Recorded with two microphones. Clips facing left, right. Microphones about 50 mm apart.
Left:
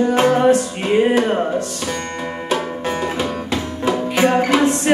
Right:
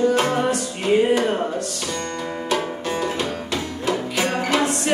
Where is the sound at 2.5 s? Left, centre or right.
Left.